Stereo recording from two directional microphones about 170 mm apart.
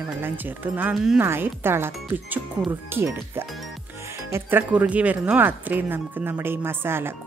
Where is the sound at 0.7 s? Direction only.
10° right (ahead or behind).